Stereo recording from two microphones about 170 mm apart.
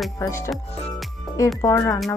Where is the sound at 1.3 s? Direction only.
20° left (ahead or behind).